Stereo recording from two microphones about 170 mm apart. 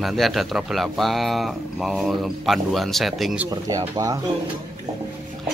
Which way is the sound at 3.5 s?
20° right (ahead or behind).